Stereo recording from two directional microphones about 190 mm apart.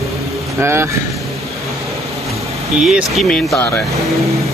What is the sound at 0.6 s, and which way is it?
Speech, 15° right (ahead or behind).